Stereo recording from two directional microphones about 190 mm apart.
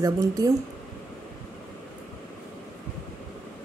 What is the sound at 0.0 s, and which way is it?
Speech, 20° right (ahead or behind).